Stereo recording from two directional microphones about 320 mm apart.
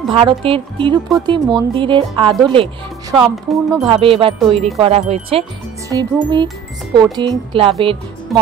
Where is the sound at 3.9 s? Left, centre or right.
Centre.